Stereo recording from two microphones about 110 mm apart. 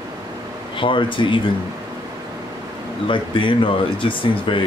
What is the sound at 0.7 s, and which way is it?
Speech, 50° left (ahead or behind).